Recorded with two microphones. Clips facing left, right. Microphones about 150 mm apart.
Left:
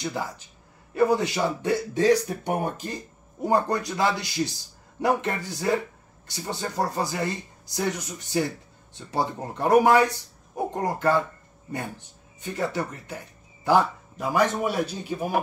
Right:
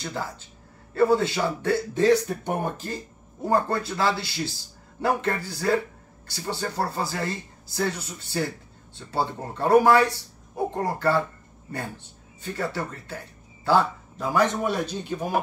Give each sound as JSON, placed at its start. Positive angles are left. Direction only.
{"t": 0.0, "sound": "speech", "side_deg": 15}
{"t": 12.4, "sound": "speech", "side_deg": 15}